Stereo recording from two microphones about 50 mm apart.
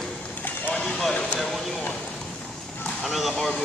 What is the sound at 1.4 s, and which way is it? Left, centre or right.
Vehicle, centre.